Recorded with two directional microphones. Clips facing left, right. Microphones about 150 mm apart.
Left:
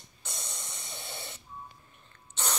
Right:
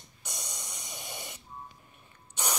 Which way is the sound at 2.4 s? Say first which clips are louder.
Right 1 dB; 10° right (ahead or behind).